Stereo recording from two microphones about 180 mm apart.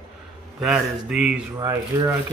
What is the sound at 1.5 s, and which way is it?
Speech, 15° right (ahead or behind).